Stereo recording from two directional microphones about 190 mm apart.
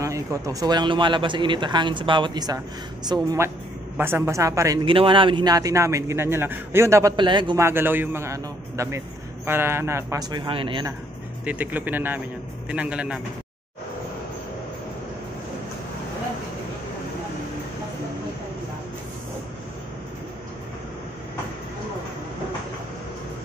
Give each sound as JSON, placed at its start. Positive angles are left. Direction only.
{"t": 0.0, "sound": "a man's voice", "side_deg": -15}
{"t": 4.9, "sound": "a man's voice", "side_deg": -25}
{"t": 7.6, "sound": "a man's voice", "side_deg": -10}
{"t": 11.4, "sound": "a man's voice", "side_deg": -10}